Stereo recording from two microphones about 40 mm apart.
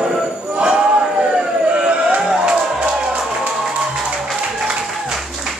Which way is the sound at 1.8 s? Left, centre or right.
Right.